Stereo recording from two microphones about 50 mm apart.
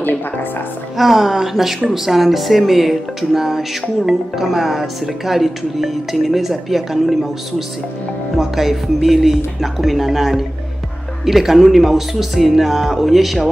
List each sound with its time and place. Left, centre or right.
0.0 s music: left
0.9 s speech: centre